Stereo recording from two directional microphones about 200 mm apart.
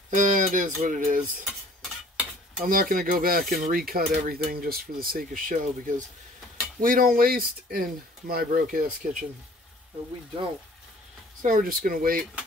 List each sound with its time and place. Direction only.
0.1 s speech: 40° right (ahead or behind)
2.6 s cutlery: 45° right (ahead or behind)
11.4 s cutlery: 45° right (ahead or behind)